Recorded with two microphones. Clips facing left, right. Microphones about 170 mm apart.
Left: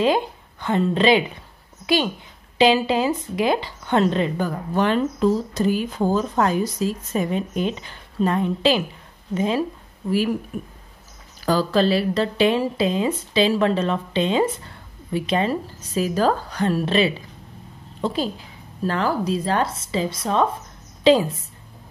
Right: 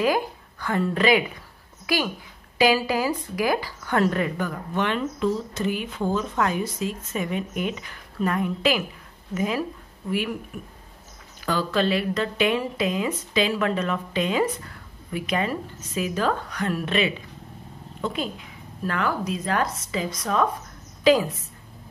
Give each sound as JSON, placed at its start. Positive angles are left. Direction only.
{"t": 0.0, "sound": "a woman's voice", "side_deg": 25}